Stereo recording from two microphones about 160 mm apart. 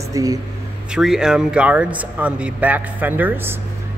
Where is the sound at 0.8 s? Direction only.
5° right (ahead or behind).